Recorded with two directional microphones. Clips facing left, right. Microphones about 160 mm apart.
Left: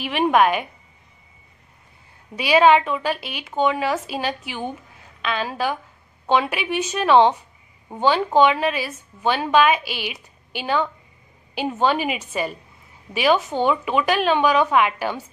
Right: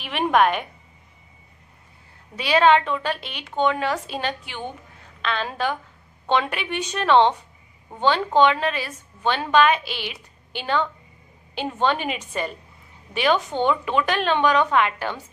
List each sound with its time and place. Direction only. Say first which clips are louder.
0.0 s a woman's voice: left 2 dB; 5° left (ahead or behind)
2.3 s a woman's voice: left 2 dB; 10° left (ahead or behind)